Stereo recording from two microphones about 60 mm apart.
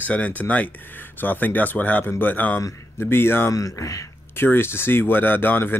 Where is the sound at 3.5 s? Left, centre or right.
Left.